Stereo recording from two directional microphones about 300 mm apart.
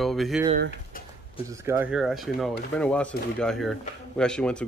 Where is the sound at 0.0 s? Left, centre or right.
Centre.